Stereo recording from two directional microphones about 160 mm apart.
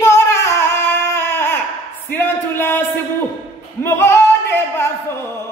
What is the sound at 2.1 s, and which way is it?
Speech, 10° left (ahead or behind).